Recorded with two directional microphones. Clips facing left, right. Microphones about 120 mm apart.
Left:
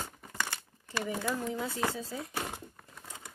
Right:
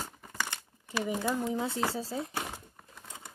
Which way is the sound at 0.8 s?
15° right (ahead or behind).